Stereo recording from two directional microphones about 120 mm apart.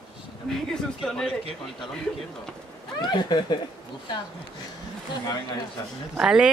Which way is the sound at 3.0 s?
40° left (ahead or behind).